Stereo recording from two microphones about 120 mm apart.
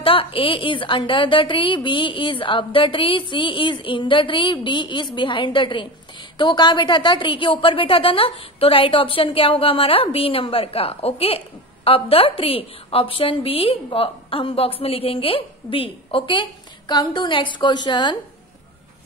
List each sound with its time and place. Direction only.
0.0 s a woman's voice: 50° left (ahead or behind)